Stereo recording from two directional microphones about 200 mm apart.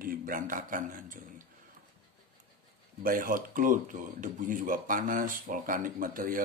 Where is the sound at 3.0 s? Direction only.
45° right (ahead or behind).